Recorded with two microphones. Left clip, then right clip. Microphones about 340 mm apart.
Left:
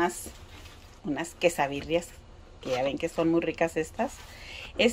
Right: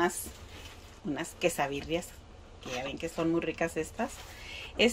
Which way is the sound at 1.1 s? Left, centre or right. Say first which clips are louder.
Left 5 dB; centre.